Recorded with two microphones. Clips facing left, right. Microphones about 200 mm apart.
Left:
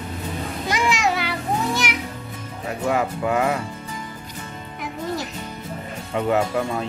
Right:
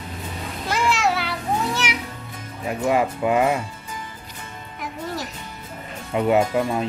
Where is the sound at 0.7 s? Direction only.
5° right (ahead or behind).